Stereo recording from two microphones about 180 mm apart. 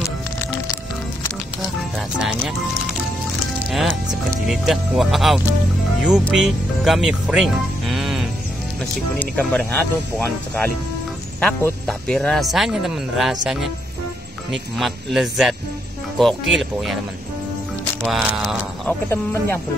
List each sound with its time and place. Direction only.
2.0 s music: centre (ahead or behind)
3.8 s speech: 20° right (ahead or behind)
4.5 s speech: centre (ahead or behind)
18.0 s speech: centre (ahead or behind)
19.0 s speech: 15° left (ahead or behind)